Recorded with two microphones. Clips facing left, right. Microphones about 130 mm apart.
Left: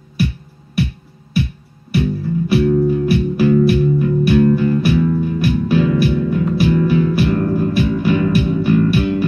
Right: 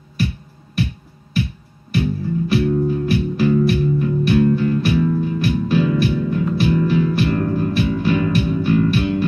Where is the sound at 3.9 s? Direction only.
10° left (ahead or behind).